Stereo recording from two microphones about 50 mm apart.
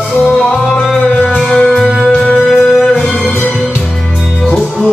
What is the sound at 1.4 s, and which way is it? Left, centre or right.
Music, centre.